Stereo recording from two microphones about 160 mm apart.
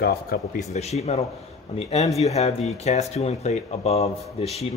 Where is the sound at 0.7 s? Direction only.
45° left (ahead or behind).